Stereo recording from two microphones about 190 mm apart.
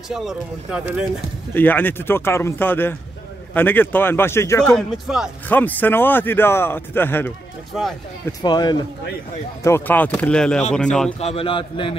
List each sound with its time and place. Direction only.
0.1 s speech: centre (ahead or behind)
1.5 s speech: 10° left (ahead or behind)
4.7 s speech: centre (ahead or behind)
5.5 s speech: 10° left (ahead or behind)
8.3 s a man's voice: 20° left (ahead or behind); by 11.1 s 5° left (ahead or behind)
11.1 s a man's voice: 30° left (ahead or behind)